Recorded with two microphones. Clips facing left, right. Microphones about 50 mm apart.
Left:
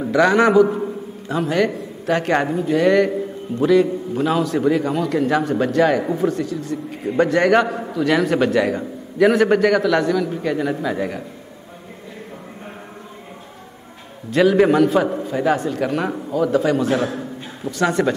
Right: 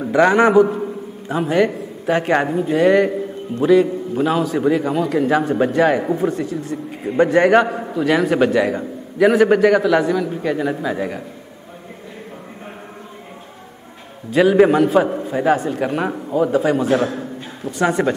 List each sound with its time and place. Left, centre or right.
0.1 s a man's voice: centre
0.7 s a sound: centre
1.3 s a man's voice: centre
14.3 s a man's voice: centre